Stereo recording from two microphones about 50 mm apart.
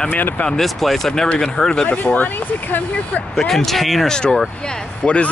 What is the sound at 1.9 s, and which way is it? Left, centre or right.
Speech, left.